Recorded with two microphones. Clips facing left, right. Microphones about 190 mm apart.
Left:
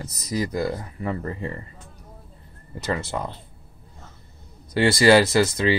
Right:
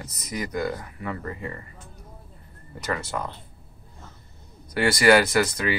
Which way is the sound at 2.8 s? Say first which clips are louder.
Left 2 dB; 25° left (ahead or behind).